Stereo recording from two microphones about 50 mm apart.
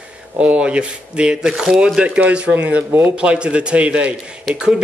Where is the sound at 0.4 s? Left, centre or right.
Right.